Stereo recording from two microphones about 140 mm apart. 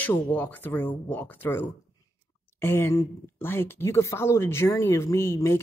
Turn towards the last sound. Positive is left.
turn(degrees=20)  # may be behind; listen again after turning